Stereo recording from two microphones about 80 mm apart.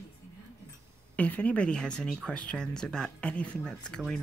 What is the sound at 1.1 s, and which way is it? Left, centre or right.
Speech, centre.